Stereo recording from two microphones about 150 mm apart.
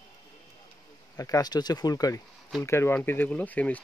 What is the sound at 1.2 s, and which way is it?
Speech, 25° left (ahead or behind).